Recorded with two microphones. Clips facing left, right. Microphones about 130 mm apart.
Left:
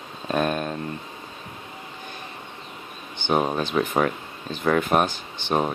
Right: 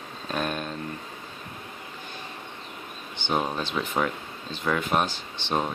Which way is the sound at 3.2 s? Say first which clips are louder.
Left 5 dB; 50° left (ahead or behind).